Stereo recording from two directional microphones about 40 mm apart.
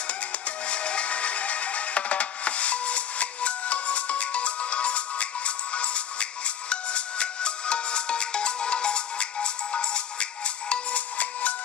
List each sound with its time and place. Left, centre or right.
0.7 s music: left